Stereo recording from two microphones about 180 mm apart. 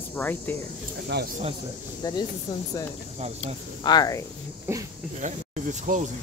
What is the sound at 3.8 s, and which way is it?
Speech, 20° left (ahead or behind).